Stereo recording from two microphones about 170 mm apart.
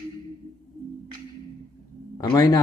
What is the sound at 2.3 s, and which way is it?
Speech, 20° left (ahead or behind).